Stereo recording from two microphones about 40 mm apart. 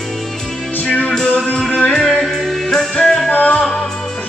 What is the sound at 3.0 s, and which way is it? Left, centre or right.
Music, left.